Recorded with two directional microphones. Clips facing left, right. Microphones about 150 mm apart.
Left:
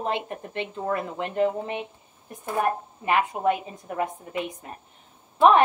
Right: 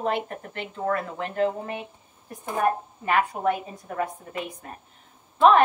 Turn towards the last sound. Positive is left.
turn(degrees=15)  # may be behind; listen again after turning